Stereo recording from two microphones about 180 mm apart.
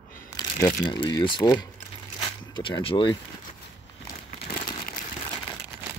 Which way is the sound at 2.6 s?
30° left (ahead or behind).